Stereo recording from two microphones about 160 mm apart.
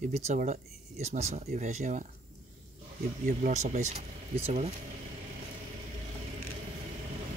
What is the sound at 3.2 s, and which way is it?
Speech, 50° right (ahead or behind).